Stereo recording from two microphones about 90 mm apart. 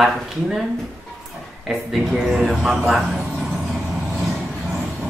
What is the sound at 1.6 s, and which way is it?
A man's voice, 5° right (ahead or behind).